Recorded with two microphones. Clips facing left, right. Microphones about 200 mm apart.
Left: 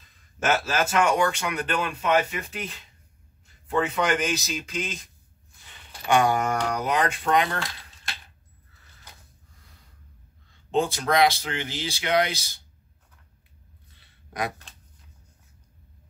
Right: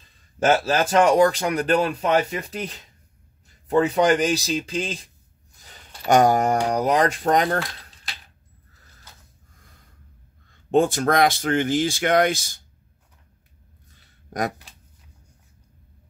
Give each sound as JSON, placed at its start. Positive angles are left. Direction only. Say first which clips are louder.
{"t": 0.0, "sound": "a man's voice", "louder": "right 6 dB", "side_deg": -30}
{"t": 10.5, "sound": "speech", "louder": "right 6 dB", "side_deg": -50}
{"t": 13.8, "sound": "a sound", "louder": "right 7 dB", "side_deg": -45}